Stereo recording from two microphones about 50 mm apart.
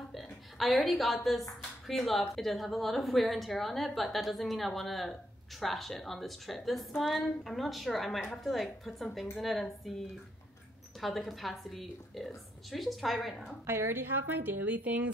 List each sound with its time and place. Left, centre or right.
0.1 s a sound: centre
0.9 s a woman's voice: centre
13.7 s a woman's voice: right